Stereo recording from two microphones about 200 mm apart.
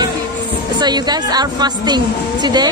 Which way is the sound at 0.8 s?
20° right (ahead or behind).